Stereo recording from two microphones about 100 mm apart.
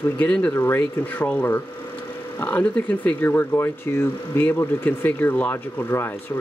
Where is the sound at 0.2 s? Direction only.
10° left (ahead or behind).